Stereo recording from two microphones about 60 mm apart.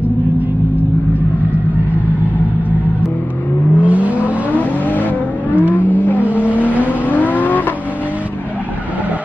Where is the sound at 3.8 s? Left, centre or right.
Right.